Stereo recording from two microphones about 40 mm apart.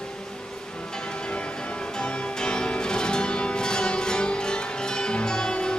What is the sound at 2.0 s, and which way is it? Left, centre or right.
Music, left.